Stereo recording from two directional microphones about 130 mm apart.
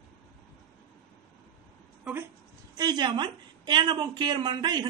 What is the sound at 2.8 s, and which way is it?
Speech, 35° right (ahead or behind).